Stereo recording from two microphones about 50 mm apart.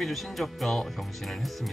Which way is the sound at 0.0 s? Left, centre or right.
Centre.